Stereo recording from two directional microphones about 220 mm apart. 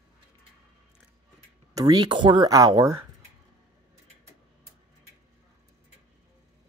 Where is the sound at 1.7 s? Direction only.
15° right (ahead or behind).